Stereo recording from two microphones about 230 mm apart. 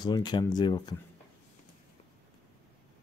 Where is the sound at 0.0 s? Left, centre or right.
Centre.